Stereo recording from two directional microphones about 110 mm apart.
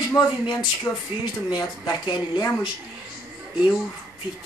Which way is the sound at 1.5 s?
40° left (ahead or behind).